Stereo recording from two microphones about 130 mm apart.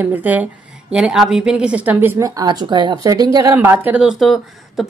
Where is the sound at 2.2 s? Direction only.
30° right (ahead or behind).